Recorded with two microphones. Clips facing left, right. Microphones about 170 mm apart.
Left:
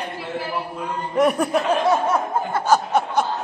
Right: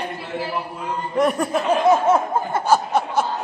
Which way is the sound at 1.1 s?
Centre (ahead or behind).